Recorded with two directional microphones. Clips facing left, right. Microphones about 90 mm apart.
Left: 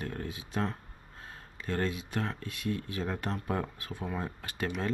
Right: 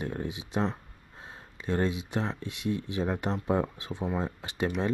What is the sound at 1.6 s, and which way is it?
Speech, 20° right (ahead or behind).